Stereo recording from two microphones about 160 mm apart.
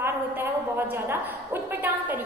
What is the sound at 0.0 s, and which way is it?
A woman's voice, 15° right (ahead or behind).